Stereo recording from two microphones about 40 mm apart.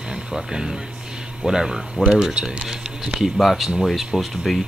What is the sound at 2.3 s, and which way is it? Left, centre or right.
Speech, right.